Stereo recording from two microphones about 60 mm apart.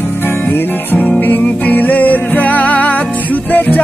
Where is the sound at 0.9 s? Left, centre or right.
Left.